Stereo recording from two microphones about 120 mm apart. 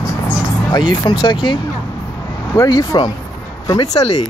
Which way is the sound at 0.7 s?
35° left (ahead or behind).